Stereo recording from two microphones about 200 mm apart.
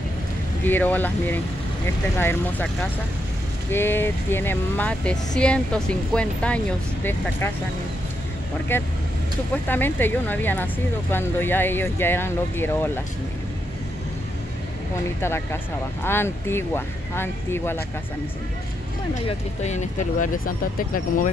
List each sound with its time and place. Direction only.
0.7 s speech: 10° left (ahead or behind)
8.7 s speech: 10° left (ahead or behind)
16.0 s speech: 10° left (ahead or behind)
19.2 s speech: 35° left (ahead or behind)